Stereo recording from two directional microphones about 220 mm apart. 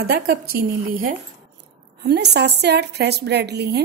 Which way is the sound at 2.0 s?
50° right (ahead or behind).